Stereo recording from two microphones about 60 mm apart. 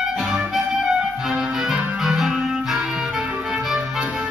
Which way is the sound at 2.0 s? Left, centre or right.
Centre.